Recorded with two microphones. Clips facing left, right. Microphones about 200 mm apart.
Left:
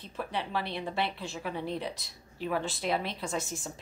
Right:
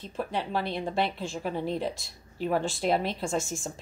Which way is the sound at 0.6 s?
45° right (ahead or behind).